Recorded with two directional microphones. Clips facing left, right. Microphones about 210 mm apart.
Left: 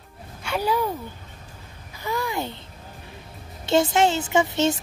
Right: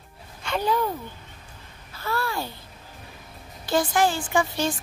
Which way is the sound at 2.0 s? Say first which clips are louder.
Left 1 dB; 15° left (ahead or behind).